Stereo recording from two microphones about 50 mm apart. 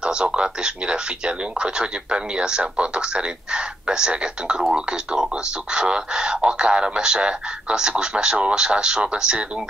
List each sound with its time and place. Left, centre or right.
0.0 s speech: centre